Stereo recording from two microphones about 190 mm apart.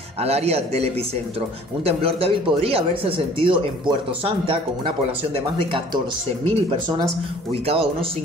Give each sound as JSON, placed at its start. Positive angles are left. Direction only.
{"t": 0.2, "sound": "a man's voice", "side_deg": -35}
{"t": 1.9, "sound": "speech", "side_deg": -30}
{"t": 6.4, "sound": "speech", "side_deg": -30}